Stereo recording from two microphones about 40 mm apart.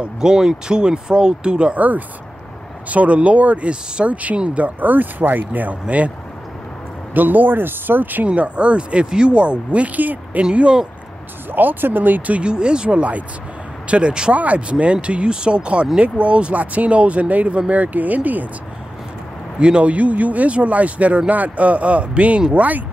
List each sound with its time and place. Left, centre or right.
0.0 s speech: centre
1.8 s speech: right
7.2 s speech: right
8.3 s speech: right
10.5 s speech: right
11.5 s speech: right
12.4 s speech: right
14.3 s speech: right
19.6 s speech: right